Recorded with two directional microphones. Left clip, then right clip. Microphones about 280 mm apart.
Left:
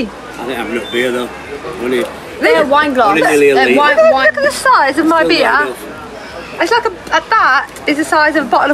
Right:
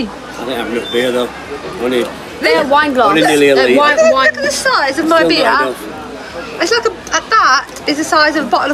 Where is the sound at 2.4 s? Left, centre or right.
Centre.